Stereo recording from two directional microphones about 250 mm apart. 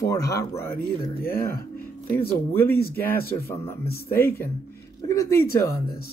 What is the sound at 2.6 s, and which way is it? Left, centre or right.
Speech, left.